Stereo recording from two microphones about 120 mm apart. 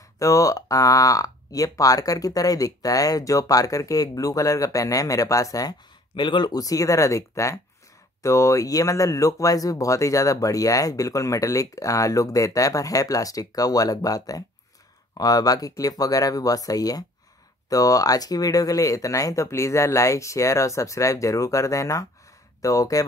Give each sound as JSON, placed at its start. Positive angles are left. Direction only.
{"t": 0.2, "sound": "speech", "side_deg": 25}